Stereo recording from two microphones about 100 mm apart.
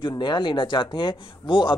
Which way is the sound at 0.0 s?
50° left (ahead or behind).